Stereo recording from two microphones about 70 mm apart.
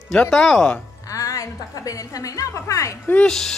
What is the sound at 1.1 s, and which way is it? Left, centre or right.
A woman's voice, left.